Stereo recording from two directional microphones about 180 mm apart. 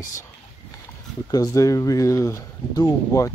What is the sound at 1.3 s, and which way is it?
Speech, 20° left (ahead or behind).